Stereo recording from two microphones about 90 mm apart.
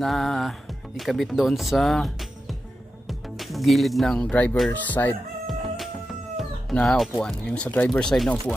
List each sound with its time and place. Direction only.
0.0 s speech: centre (ahead or behind); by 5.1 s 20° left (ahead or behind)
5.5 s music: centre (ahead or behind)
6.3 s cat: 5° left (ahead or behind)
7.4 s speech: 15° left (ahead or behind)